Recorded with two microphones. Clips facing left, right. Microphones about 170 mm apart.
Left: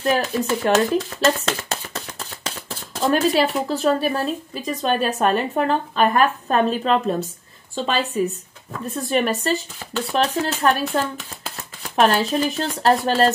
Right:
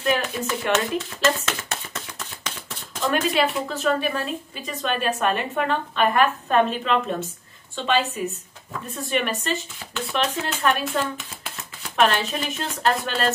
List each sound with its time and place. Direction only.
0.0 s speech: 35° left (ahead or behind)